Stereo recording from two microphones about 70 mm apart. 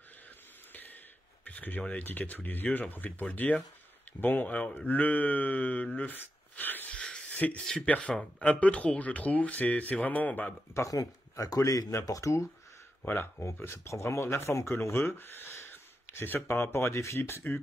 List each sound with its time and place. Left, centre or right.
1.4 s speech: left
7.0 s a sound: centre
7.6 s speech: centre
10.7 s speech: left
12.1 s speech: left
13.0 s speech: left
13.4 s speech: left